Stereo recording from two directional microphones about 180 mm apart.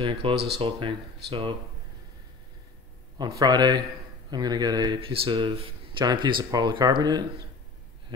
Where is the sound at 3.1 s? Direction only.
25° right (ahead or behind).